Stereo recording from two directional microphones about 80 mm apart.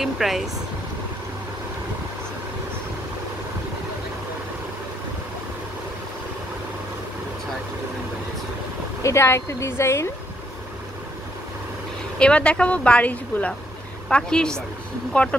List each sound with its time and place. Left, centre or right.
0.0 s speech: centre
9.0 s speech: left
12.2 s speech: centre